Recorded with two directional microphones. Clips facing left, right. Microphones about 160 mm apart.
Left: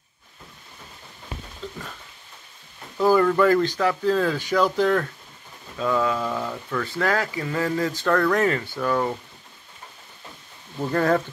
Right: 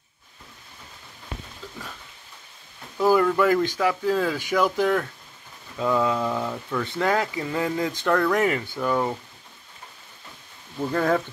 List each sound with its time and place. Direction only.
3.0 s speech: 10° right (ahead or behind)
6.8 s speech: 20° right (ahead or behind)
10.9 s speech: 5° right (ahead or behind)